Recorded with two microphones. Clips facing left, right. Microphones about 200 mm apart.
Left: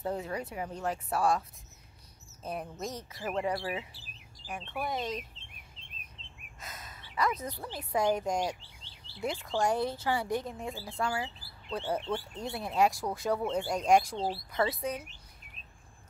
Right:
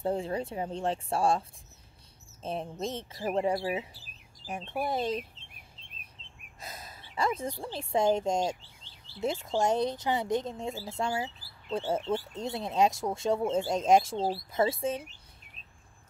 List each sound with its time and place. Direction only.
0.0 s a woman's voice: 30° right (ahead or behind)
2.4 s a woman's voice: 25° right (ahead or behind)
6.6 s a sound: 35° right (ahead or behind)
7.6 s a woman's voice: 25° right (ahead or behind)